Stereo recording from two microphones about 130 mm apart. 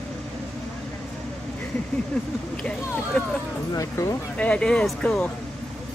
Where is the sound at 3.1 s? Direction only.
10° left (ahead or behind).